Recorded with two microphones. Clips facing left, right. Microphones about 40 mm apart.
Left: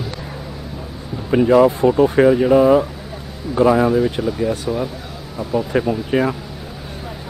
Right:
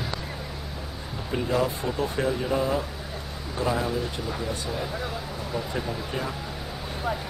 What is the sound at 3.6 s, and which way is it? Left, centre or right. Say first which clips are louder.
Speech: left 13 dB; left.